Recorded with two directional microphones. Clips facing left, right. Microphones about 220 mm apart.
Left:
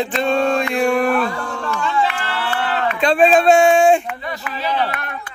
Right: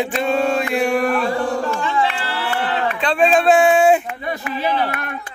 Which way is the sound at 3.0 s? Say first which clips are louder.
Left 4 dB; 40° left (ahead or behind).